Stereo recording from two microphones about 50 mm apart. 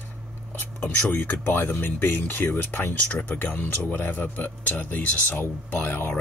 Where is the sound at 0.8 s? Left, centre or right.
Left.